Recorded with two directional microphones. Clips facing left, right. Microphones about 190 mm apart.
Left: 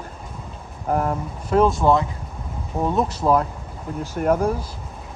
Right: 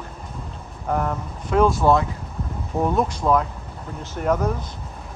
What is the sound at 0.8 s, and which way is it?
Speech, 35° left (ahead or behind).